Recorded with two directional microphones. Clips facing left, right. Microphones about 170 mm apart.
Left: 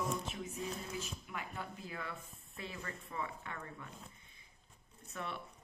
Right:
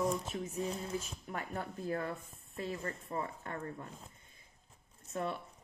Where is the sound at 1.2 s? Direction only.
45° right (ahead or behind).